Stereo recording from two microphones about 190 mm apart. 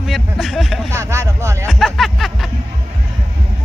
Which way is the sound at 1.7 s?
Centre (ahead or behind).